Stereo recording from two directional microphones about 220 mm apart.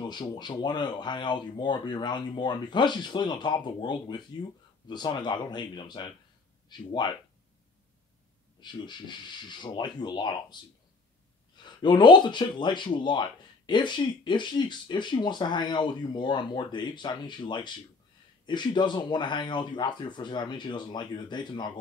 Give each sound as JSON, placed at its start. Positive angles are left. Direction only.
{"t": 0.0, "sound": "speech", "side_deg": 20}
{"t": 8.5, "sound": "speech", "side_deg": 20}